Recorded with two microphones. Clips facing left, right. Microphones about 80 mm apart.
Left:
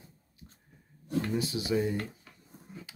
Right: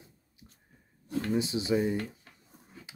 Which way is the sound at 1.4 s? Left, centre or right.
Right.